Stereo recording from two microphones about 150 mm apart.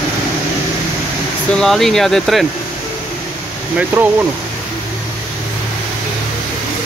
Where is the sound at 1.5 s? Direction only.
5° left (ahead or behind).